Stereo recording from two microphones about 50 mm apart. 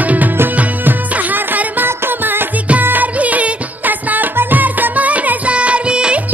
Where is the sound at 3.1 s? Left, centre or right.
Right.